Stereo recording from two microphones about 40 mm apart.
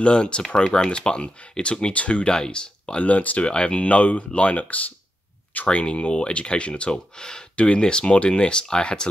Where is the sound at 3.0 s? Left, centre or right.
Left.